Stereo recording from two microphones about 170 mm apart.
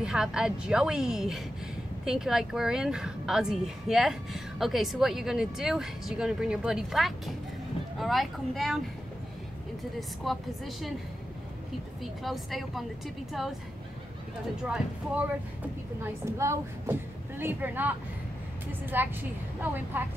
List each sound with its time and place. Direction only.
0.0 s a woman's voice: 5° right (ahead or behind)
9.9 s a woman's voice: centre (ahead or behind)
12.0 s a woman's voice: centre (ahead or behind)
14.6 s a woman's voice: 5° right (ahead or behind)
16.0 s a woman's voice: 15° right (ahead or behind)